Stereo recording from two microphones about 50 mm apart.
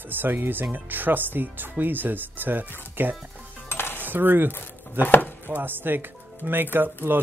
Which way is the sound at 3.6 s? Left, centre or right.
Left.